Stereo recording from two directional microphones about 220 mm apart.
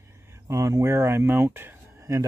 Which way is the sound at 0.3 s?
15° right (ahead or behind).